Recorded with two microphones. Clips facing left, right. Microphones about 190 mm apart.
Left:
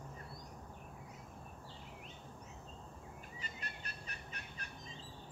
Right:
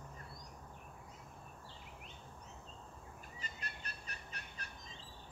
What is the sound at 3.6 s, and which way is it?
Fowl, 40° right (ahead or behind).